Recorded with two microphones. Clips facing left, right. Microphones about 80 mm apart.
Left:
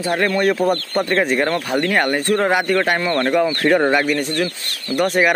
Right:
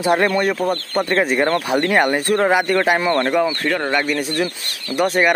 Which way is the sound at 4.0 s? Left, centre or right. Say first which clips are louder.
Left 1 dB; centre.